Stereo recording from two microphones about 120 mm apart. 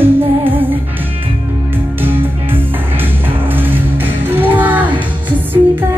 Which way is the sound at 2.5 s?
15° right (ahead or behind).